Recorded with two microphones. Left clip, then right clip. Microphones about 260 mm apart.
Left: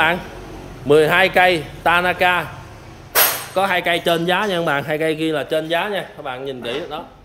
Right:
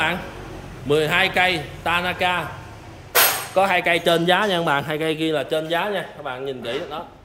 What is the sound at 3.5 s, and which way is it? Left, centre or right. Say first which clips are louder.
Speech: even; centre.